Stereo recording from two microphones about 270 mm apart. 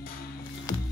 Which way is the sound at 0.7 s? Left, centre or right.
Centre.